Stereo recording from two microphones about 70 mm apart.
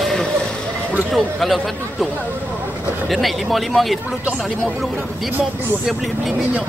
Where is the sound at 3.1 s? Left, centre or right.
Centre.